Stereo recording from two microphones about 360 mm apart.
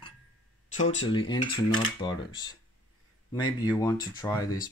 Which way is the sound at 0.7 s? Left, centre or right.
Left.